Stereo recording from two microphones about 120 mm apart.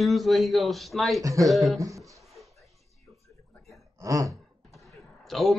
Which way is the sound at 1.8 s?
25° right (ahead or behind).